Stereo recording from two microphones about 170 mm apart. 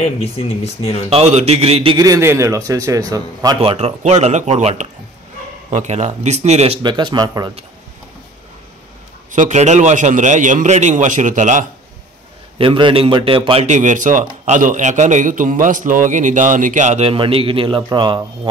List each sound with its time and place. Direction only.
0.0 s speech: 35° left (ahead or behind)
1.1 s speech: 40° right (ahead or behind)
2.0 s a man's voice: 20° right (ahead or behind)
3.6 s speech: 40° right (ahead or behind); by 7.5 s 25° right (ahead or behind)
9.3 s speech: 45° right (ahead or behind)
12.5 s speech: 30° right (ahead or behind)